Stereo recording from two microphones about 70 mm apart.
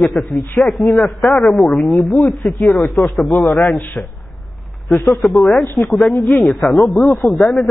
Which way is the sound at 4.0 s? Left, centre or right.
Centre.